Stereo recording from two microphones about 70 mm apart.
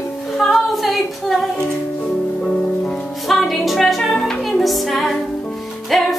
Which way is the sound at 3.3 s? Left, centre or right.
Centre.